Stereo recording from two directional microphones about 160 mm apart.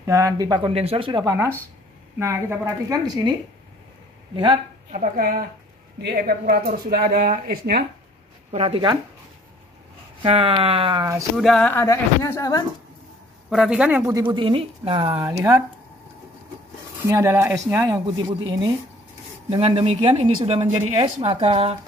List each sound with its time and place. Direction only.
0.0 s speech: 20° right (ahead or behind)
4.9 s a woman's voice: 60° right (ahead or behind)
5.9 s speech: 80° right
8.5 s speech: 40° right (ahead or behind)
10.2 s speech: 35° right (ahead or behind)
11.3 s speech: centre (ahead or behind)
11.7 s speech: 20° left (ahead or behind)
13.5 s speech: 5° right (ahead or behind)
14.0 s speech: 25° right (ahead or behind)
15.1 s speech: 20° right (ahead or behind)
17.1 s speech: 15° right (ahead or behind)
18.0 s speech: 30° right (ahead or behind)